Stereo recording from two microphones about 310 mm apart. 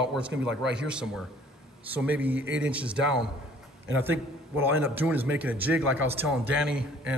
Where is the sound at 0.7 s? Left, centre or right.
Centre.